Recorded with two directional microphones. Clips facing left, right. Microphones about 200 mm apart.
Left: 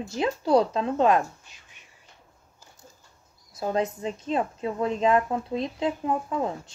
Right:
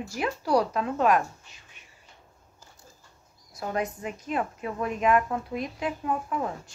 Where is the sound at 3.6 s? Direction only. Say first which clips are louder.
Left 4 dB; 25° left (ahead or behind).